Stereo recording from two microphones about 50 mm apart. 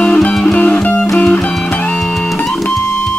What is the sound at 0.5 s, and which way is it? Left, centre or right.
Music, left.